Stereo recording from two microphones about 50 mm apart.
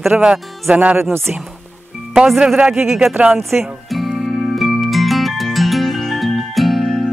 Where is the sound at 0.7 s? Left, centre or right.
Right.